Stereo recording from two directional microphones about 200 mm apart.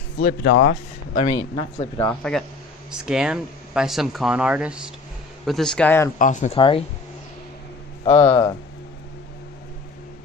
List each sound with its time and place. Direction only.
0.2 s speech: 50° left (ahead or behind)
0.7 s speech: 35° left (ahead or behind)
2.0 s speech: 5° left (ahead or behind)
2.9 s speech: 5° right (ahead or behind)
6.1 s speech: 40° left (ahead or behind)
8.0 s speech: 25° left (ahead or behind)